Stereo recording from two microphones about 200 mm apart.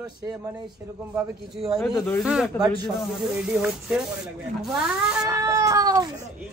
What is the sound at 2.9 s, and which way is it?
Rub, centre (ahead or behind).